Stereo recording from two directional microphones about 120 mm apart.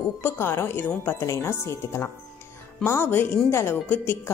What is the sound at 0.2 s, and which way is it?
Speech, 20° left (ahead or behind).